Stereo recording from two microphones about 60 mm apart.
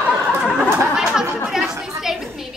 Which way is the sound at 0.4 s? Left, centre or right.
Centre.